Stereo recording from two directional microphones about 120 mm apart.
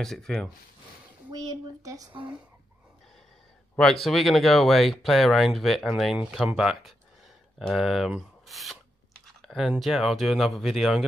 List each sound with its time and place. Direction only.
0.0 s speech: 5° left (ahead or behind)
1.3 s speech: 35° right (ahead or behind)
3.7 s speech: 5° left (ahead or behind)
8.5 s a sound: centre (ahead or behind)
9.5 s speech: centre (ahead or behind)